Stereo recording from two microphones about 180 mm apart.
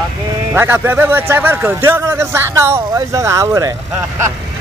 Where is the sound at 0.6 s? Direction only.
10° right (ahead or behind).